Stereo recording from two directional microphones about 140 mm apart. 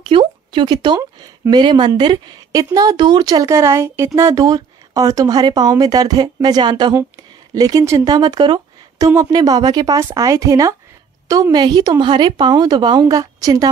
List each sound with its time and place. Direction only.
0.0 s a woman's voice: 35° right (ahead or behind)